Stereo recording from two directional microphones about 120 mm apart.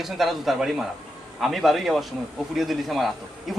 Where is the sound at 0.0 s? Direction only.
Centre (ahead or behind).